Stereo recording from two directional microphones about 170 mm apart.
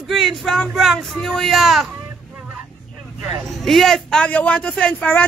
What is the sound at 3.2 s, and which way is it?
A man's voice, centre (ahead or behind).